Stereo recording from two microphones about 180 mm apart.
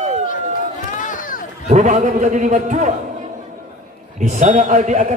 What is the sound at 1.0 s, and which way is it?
Run, 50° left (ahead or behind).